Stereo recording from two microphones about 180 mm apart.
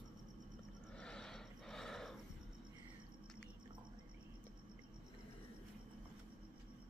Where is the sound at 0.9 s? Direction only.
5° left (ahead or behind).